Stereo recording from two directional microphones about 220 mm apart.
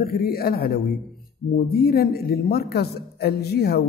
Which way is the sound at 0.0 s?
45° left (ahead or behind).